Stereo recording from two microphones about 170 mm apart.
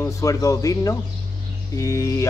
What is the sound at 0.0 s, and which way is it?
A man's voice, 20° left (ahead or behind).